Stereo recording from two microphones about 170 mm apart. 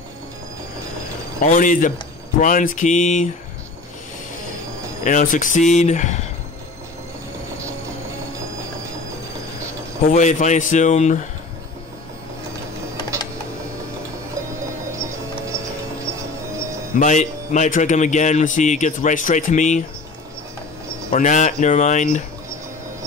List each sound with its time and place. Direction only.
1.4 s a man's voice: 50° left (ahead or behind)
5.0 s a man's voice: 50° left (ahead or behind)
10.0 s a man's voice: 45° left (ahead or behind)
16.9 s a man's voice: 45° left (ahead or behind)
21.1 s a man's voice: 45° left (ahead or behind)